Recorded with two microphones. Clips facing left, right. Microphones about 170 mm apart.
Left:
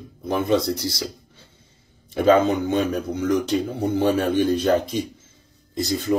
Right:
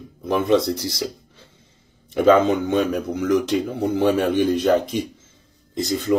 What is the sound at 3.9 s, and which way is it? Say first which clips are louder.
Speech: right 1 dB; 20° right (ahead or behind).